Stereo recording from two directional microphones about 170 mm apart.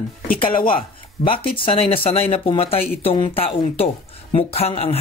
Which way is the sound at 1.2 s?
40° left (ahead or behind).